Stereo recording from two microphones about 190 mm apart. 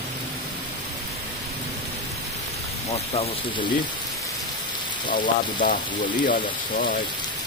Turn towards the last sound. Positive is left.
turn(degrees=50)  # may be behind; listen again after turning